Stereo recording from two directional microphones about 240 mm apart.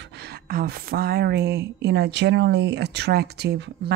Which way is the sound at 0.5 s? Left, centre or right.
Right.